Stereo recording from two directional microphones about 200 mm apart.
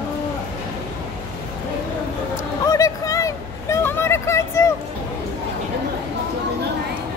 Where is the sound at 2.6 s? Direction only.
15° left (ahead or behind).